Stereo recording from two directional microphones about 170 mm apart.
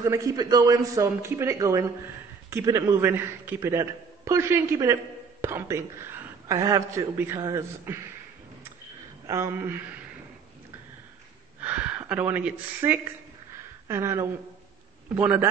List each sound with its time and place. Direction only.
0.0 s a man's voice: 20° right (ahead or behind)
9.3 s speech: 15° right (ahead or behind)
11.6 s speech: 10° right (ahead or behind)